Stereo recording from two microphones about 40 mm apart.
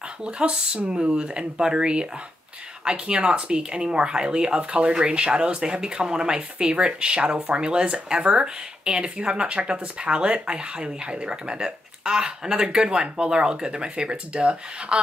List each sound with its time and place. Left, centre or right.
0.2 s speech: right